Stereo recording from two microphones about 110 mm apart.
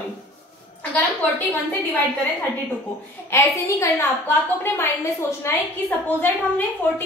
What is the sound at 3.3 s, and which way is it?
A woman's voice, 25° left (ahead or behind).